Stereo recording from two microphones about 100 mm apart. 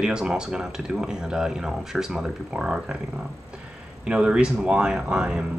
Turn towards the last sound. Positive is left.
turn(degrees=-10)  # may be behind; listen again after turning